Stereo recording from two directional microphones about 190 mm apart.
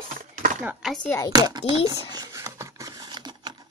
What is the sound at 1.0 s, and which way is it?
Speech, 15° left (ahead or behind).